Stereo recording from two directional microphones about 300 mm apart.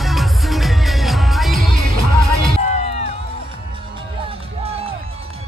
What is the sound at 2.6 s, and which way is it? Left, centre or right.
Music, left.